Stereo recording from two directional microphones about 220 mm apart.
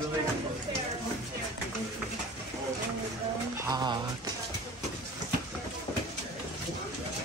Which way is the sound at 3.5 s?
15° right (ahead or behind).